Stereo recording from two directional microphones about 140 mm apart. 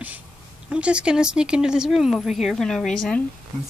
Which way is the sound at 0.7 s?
10° right (ahead or behind).